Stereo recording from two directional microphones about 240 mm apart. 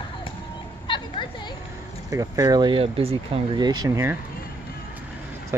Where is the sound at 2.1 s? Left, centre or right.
Centre.